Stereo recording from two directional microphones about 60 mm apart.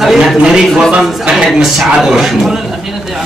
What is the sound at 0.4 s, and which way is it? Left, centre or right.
A man's voice, centre.